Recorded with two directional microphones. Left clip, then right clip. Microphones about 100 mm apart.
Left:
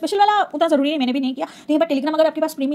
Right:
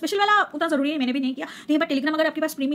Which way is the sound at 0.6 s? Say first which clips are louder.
Left 6 dB; 50° left (ahead or behind).